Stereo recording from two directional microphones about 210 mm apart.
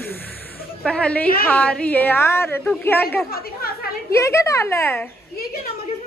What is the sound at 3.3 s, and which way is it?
Speech, 45° left (ahead or behind).